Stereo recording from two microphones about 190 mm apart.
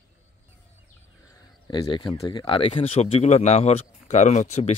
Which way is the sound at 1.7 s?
25° left (ahead or behind).